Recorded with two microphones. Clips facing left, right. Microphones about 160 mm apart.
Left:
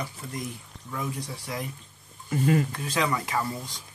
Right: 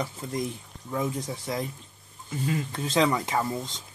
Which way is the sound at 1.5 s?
30° right (ahead or behind).